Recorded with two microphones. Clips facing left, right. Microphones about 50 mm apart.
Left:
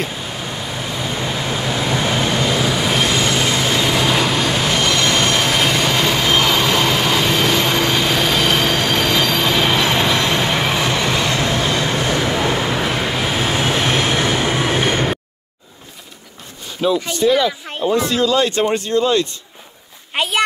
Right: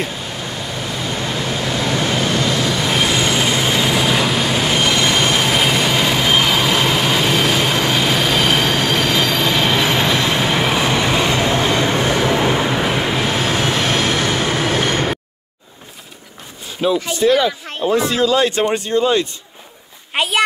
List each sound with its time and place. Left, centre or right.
0.2 s vehicle: centre
2.9 s vehicle: centre; by 11.9 s right
12.4 s vehicle: centre
13.8 s train: centre
16.8 s speech: centre
20.2 s a child's voice: centre